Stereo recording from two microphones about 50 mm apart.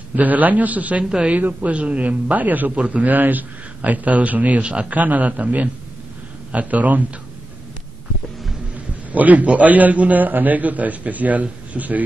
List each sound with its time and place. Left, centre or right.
0.1 s a man's voice: right
1.0 s speech: centre
1.3 s a man's voice: right
2.7 s a man's voice: right
8.7 s a man's voice: right